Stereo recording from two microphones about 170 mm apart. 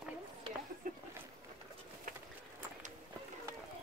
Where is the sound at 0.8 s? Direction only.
55° right (ahead or behind).